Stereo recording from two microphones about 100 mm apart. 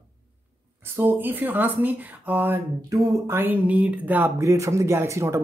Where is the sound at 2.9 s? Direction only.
25° right (ahead or behind).